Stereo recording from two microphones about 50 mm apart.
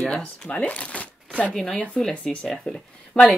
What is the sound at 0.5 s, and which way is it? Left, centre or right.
Speech, left.